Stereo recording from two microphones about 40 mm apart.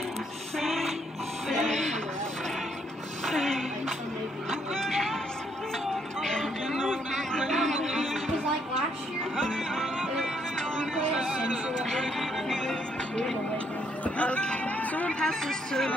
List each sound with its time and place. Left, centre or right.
0.6 s music: centre
3.3 s music: centre
4.5 s a sound: centre
6.2 s music: centre
7.1 s music: centre
9.4 s music: centre
9.9 s music: centre
11.1 s a sound: centre
12.0 s music: centre
14.0 s music: left
14.8 s a sound: left
15.2 s a sound: centre